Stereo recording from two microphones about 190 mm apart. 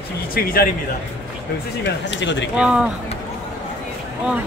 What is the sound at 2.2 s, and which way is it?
Speech, 70° left (ahead or behind).